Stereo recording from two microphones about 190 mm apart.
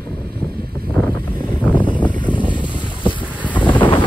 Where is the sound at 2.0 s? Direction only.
25° left (ahead or behind).